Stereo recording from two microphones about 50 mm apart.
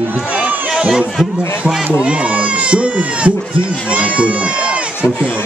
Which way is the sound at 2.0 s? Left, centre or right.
Right.